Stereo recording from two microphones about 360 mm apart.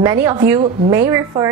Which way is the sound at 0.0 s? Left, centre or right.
Centre.